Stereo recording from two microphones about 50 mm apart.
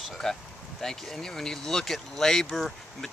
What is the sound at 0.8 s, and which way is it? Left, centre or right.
Speech, centre.